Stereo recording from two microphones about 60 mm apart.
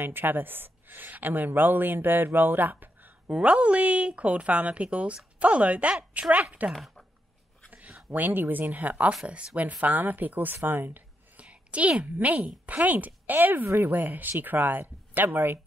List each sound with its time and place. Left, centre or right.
0.0 s speech: right
3.3 s speech: centre
6.7 s speech: centre
8.1 s speech: right
11.4 s speech: right